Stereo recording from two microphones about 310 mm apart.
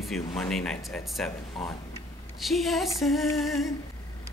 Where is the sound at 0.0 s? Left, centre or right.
Centre.